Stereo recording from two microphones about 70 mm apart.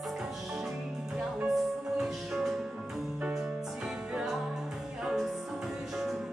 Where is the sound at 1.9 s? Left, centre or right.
Centre.